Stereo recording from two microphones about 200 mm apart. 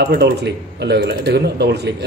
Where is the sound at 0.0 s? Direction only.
50° right (ahead or behind).